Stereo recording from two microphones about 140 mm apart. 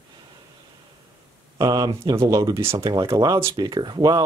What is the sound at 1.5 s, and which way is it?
Speech, 30° right (ahead or behind).